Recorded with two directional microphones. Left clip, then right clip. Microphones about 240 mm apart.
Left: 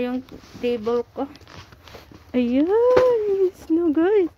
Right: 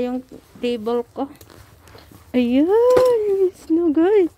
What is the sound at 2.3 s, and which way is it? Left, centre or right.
Speech, centre.